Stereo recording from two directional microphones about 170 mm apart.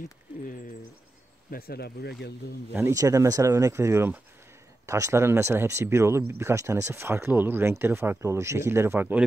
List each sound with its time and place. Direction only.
1.5 s speech: 65° left (ahead or behind)
2.7 s speech: 15° right (ahead or behind)